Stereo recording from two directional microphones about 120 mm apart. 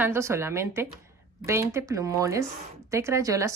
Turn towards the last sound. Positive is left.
turn(degrees=-25)  # may be behind; listen again after turning